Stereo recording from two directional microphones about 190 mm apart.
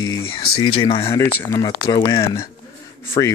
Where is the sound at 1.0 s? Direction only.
15° left (ahead or behind).